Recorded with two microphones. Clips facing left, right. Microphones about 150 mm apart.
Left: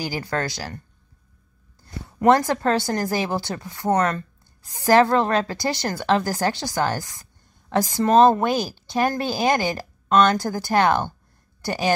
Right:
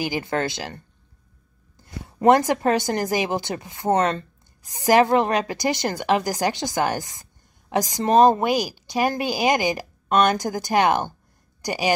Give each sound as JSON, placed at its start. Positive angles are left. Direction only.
{"t": 0.0, "sound": "speech", "side_deg": -20}
{"t": 1.8, "sound": "a woman's voice", "side_deg": -20}